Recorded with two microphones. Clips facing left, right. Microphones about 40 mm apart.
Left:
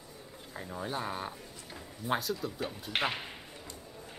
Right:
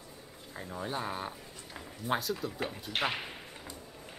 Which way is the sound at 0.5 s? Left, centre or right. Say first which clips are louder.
Even; centre.